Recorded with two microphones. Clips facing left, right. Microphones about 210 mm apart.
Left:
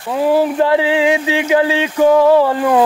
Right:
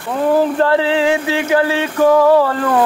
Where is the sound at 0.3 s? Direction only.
15° left (ahead or behind).